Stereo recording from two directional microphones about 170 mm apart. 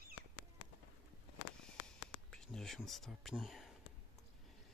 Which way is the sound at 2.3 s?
5° left (ahead or behind).